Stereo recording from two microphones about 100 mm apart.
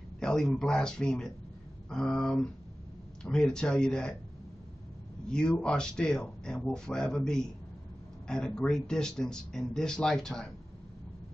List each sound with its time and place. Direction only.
0.2 s speech: 5° left (ahead or behind)
5.3 s speech: 5° left (ahead or behind)